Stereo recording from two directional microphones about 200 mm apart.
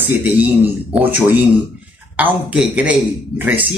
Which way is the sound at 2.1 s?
10° right (ahead or behind).